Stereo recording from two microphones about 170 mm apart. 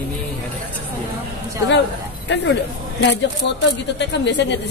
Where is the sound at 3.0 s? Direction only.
90° left.